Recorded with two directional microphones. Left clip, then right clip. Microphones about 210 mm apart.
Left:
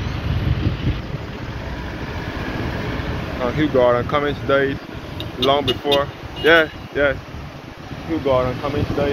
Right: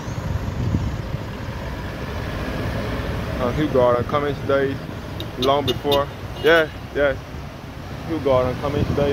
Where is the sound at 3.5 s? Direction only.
Centre (ahead or behind).